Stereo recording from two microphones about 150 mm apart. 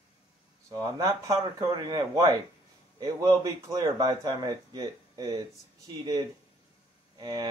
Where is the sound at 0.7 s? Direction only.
25° right (ahead or behind).